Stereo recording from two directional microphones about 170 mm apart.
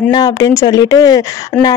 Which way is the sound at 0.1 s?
20° left (ahead or behind).